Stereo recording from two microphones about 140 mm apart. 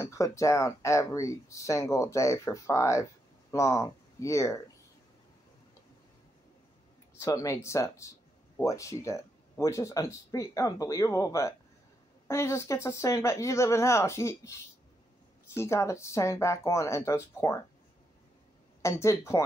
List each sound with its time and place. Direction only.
0.0 s speech: 20° left (ahead or behind)
7.2 s speech: 20° left (ahead or behind)
15.5 s speech: 20° left (ahead or behind)
18.8 s speech: 20° left (ahead or behind)